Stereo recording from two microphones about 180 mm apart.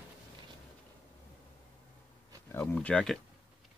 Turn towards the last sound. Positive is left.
turn(degrees=5)  # may be behind; listen again after turning